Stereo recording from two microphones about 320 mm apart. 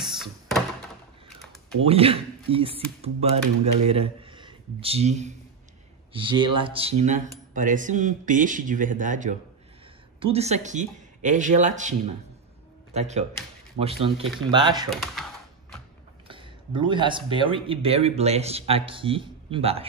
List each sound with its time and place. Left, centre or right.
1.8 s speech: centre
12.9 s speech: right
14.9 s speech: centre
16.3 s speech: centre